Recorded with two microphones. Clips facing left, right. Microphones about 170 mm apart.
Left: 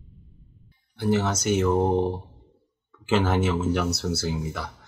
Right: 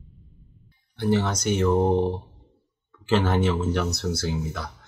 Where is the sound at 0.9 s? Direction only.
5° left (ahead or behind).